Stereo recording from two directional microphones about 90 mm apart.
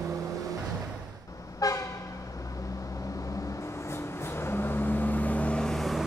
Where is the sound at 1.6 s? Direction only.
40° left (ahead or behind).